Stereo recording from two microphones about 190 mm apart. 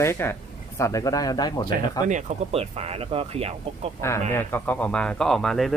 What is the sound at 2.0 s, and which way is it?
Speech, 35° right (ahead or behind).